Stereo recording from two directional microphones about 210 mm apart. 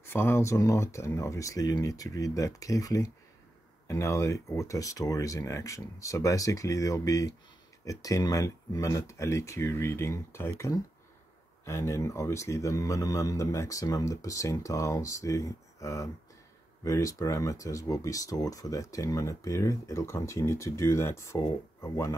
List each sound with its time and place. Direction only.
0.0 s speech: 10° left (ahead or behind)